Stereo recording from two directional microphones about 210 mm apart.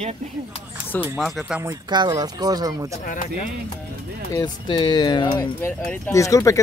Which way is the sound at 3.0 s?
40° left (ahead or behind).